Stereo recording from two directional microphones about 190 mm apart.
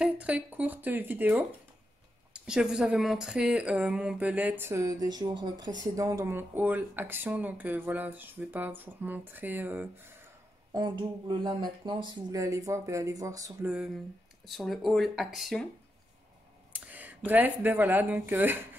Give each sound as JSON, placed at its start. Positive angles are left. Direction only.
{"t": 0.0, "sound": "speech", "side_deg": -5}
{"t": 10.7, "sound": "speech", "side_deg": -25}
{"t": 14.4, "sound": "speech", "side_deg": 0}
{"t": 16.7, "sound": "speech", "side_deg": -10}